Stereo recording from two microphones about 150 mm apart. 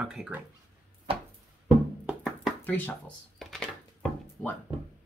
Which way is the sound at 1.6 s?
5° right (ahead or behind).